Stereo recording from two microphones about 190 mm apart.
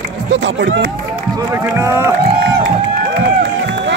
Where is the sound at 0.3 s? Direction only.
75° right (ahead or behind).